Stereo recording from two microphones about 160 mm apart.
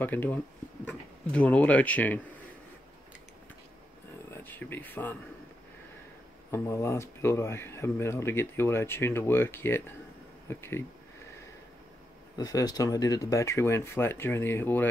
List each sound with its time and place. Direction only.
0.0 s speech: 10° left (ahead or behind)
4.3 s speech: 10° left (ahead or behind)
6.5 s speech: 15° left (ahead or behind)
12.4 s speech: 25° left (ahead or behind)